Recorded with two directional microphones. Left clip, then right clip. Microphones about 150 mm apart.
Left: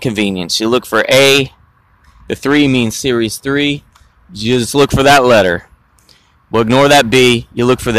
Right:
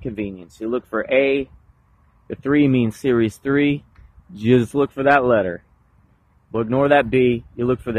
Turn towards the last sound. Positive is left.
turn(degrees=35)  # may be behind; listen again after turning